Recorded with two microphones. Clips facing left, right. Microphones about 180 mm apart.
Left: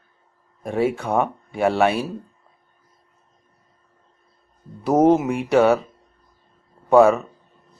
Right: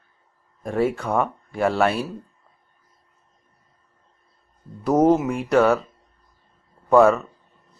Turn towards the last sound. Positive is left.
turn(degrees=5)  # may be behind; listen again after turning